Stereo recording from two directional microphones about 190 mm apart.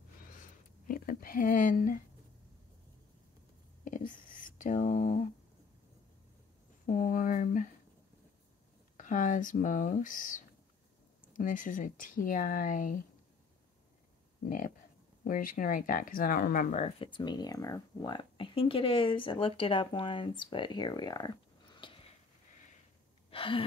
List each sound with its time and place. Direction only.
0.4 s a sound: 50° left (ahead or behind)
3.8 s whispering: 45° left (ahead or behind)
6.9 s speech: 45° left (ahead or behind)
8.9 s speech: 45° left (ahead or behind)
14.4 s speech: 45° left (ahead or behind)
16.8 s speech: 25° left (ahead or behind)
21.8 s a sound: 25° left (ahead or behind)
23.3 s gasp: 30° left (ahead or behind)